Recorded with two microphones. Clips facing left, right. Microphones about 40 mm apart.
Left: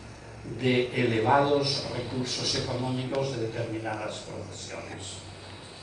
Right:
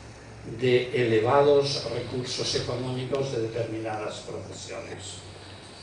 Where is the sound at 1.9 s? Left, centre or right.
Centre.